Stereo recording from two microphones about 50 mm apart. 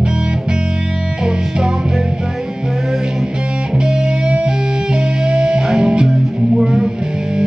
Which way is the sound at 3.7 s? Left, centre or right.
Centre.